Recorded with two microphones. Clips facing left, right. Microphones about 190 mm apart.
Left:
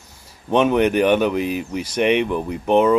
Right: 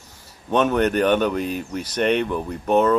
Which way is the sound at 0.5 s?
10° left (ahead or behind).